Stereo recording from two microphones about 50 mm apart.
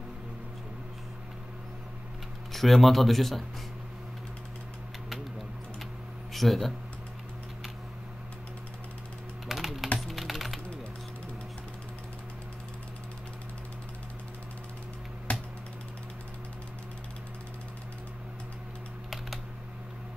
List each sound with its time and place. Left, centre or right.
2.5 s speech: centre
6.3 s speech: centre
9.5 s typing: centre
15.3 s computer keyboard: left